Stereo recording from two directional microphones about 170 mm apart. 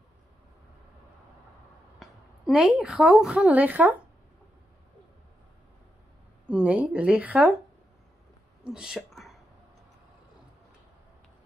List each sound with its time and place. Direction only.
2.0 s a woman's voice: centre (ahead or behind)
6.4 s speech: 5° right (ahead or behind)
8.6 s a sound: 5° right (ahead or behind)